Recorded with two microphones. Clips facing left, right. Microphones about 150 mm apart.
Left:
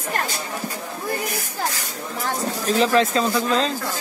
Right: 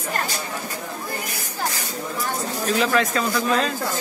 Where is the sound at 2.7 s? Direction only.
30° left (ahead or behind).